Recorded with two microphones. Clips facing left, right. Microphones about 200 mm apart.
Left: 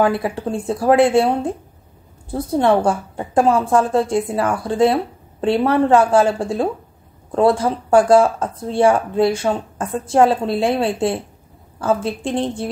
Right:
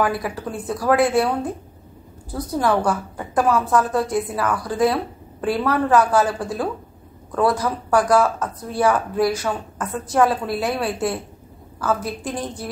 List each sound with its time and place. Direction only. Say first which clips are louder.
0.0 s a woman's voice: left 5 dB; 25° left (ahead or behind)